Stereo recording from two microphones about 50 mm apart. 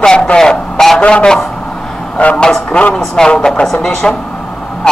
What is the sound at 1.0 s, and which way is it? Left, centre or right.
A man's voice, left.